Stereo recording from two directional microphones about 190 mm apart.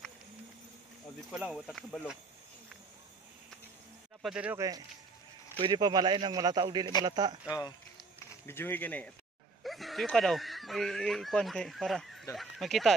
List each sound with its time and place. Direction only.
1.3 s speech: centre (ahead or behind)
4.2 s speech: 5° right (ahead or behind)
5.6 s a man's voice: 25° right (ahead or behind)
8.5 s speech: 10° left (ahead or behind)